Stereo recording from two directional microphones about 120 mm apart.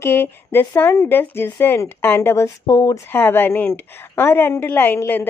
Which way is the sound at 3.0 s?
15° left (ahead or behind).